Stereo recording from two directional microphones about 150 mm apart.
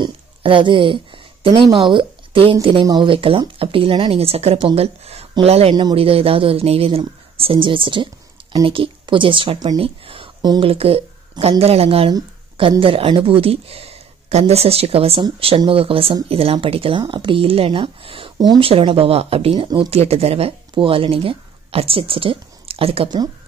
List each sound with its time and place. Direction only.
0.0 s speech: 35° right (ahead or behind)
12.1 s a sound: 35° right (ahead or behind)
12.8 s speech: 35° right (ahead or behind)
19.9 s speech: 45° right (ahead or behind)